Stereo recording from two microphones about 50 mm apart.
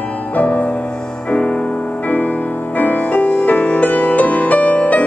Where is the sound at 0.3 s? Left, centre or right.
Left.